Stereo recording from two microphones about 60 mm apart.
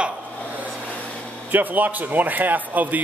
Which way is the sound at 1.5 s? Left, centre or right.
Right.